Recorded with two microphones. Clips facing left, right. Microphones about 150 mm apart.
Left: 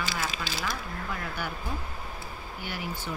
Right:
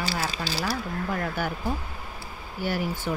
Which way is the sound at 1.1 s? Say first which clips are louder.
Right 6 dB; 45° right (ahead or behind).